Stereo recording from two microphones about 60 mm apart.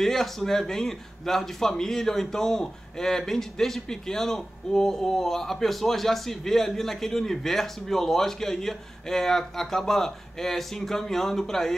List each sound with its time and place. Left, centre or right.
0.0 s speech: centre